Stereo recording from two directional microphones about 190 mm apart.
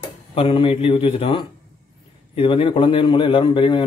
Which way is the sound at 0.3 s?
30° left (ahead or behind).